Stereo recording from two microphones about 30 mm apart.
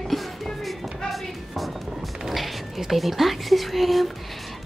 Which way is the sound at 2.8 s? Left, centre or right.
Centre.